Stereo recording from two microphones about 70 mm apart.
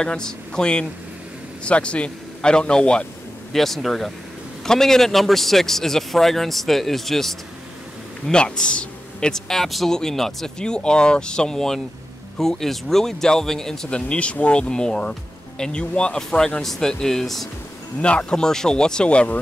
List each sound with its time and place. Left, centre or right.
0.0 s speech: centre
3.5 s a man's voice: centre